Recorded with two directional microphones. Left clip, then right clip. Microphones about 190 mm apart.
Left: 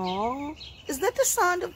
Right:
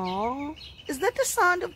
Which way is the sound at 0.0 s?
30° right (ahead or behind).